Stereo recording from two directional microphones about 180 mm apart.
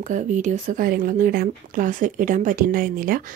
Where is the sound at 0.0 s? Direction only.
45° right (ahead or behind).